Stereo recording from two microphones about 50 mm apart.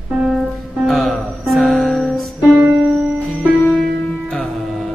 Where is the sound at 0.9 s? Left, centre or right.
Centre.